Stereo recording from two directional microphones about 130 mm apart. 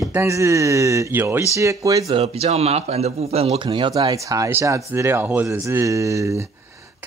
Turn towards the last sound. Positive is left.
turn(degrees=-25)  # may be behind; listen again after turning